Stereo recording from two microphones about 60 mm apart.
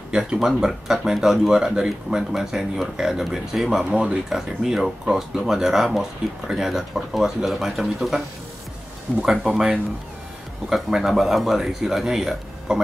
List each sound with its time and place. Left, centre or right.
0.1 s speech: centre
3.9 s speech: centre
4.3 s speech: centre
9.2 s speech: centre